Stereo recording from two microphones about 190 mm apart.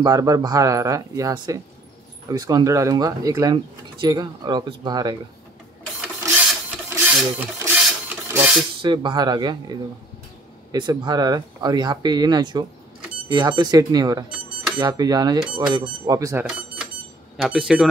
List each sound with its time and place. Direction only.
0.0 s speech: 20° right (ahead or behind)
5.9 s printer: 5° right (ahead or behind)
8.8 s speech: 25° right (ahead or behind)
17.4 s speech: 5° right (ahead or behind)